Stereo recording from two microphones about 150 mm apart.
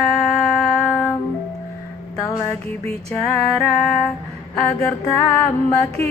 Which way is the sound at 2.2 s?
20° left (ahead or behind).